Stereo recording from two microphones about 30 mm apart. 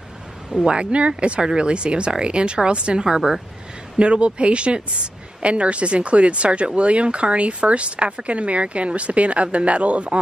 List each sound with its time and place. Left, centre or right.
0.7 s speech: right
4.0 s speech: right